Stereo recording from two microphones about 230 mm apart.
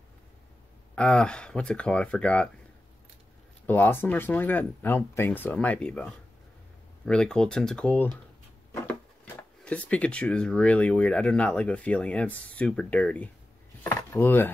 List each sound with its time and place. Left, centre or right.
0.9 s speech: centre
3.6 s speech: centre
13.8 s a sound: centre